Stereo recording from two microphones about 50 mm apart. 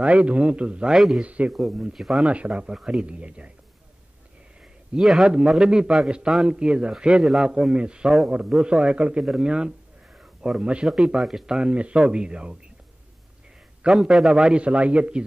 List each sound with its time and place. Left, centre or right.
0.0 s speech: right
0.9 s a man's voice: centre
1.2 s speech: right
1.5 s a man's voice: centre
2.2 s speech: right
4.9 s a man's voice: centre
5.2 s a man's voice: right
11.1 s speech: centre
13.8 s a man's voice: centre
14.3 s speech: centre